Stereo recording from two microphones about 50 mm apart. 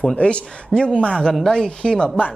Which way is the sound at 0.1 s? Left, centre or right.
Left.